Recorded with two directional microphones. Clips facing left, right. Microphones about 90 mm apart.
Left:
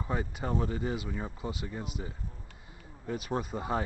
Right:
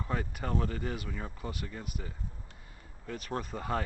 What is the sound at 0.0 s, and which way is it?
Speech, 15° left (ahead or behind).